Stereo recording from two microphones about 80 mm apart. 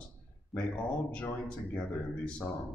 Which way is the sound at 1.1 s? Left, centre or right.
Centre.